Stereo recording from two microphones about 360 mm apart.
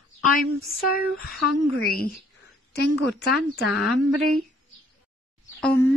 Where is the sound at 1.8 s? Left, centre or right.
Left.